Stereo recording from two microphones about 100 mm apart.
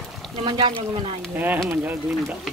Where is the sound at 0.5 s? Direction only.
55° right (ahead or behind).